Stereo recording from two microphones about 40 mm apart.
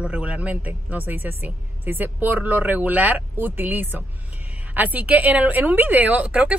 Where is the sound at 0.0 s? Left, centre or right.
Right.